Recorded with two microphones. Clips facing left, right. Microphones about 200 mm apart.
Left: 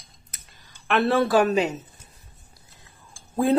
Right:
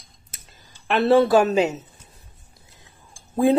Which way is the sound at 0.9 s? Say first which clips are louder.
Right 4 dB; 25° right (ahead or behind).